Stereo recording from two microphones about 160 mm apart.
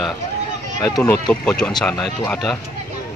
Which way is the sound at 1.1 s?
5° left (ahead or behind).